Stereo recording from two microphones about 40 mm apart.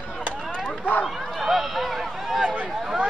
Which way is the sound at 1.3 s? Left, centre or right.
Centre.